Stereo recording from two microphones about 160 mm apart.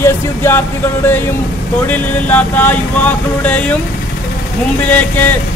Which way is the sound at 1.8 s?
10° left (ahead or behind).